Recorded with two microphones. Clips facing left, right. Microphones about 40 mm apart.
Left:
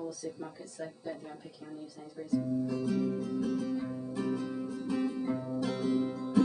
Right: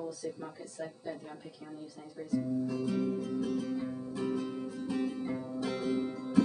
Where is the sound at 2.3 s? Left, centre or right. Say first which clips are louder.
Left 1 dB; centre.